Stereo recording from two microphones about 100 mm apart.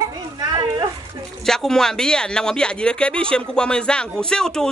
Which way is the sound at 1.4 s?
5° left (ahead or behind).